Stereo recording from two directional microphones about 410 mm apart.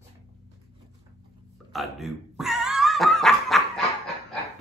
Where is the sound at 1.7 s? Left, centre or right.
Centre.